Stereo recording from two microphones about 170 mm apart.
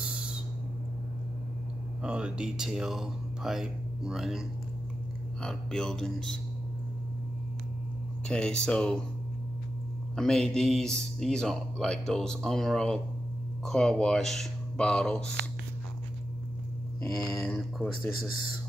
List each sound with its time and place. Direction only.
0.0 s owl: 5° right (ahead or behind)
2.0 s speech: 5° right (ahead or behind)
5.4 s speech: 5° left (ahead or behind)
8.3 s speech: 5° left (ahead or behind)
10.1 s speech: 5° left (ahead or behind)
17.0 s speech: 15° left (ahead or behind)